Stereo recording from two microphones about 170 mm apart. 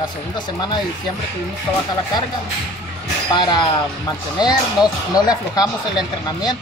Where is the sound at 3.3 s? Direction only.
25° left (ahead or behind).